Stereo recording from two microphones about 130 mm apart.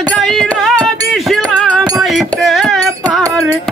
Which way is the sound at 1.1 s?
Centre (ahead or behind).